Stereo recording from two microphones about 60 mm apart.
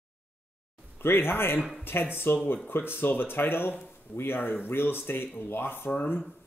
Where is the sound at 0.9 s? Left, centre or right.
Left.